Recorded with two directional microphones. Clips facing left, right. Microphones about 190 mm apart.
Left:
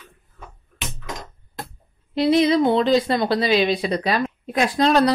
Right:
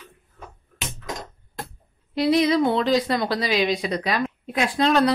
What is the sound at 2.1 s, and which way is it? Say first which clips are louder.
A woman's voice: left 2 dB; 25° left (ahead or behind).